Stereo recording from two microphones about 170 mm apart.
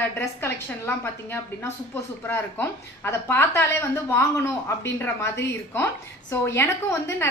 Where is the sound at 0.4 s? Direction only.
15° left (ahead or behind).